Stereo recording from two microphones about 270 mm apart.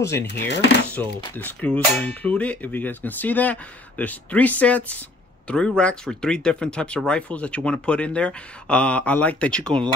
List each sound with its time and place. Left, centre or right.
0.3 s speech: left
1.2 s speech: centre